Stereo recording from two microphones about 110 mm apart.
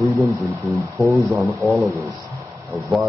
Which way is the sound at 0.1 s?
Centre (ahead or behind).